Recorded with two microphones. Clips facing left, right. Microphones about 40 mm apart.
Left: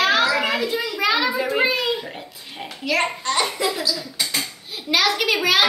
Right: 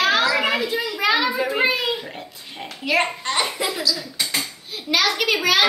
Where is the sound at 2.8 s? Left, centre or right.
Centre.